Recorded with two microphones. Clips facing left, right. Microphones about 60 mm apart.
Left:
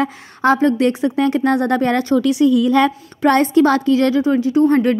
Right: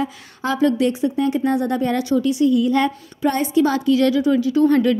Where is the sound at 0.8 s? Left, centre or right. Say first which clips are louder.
Left 3 dB; left.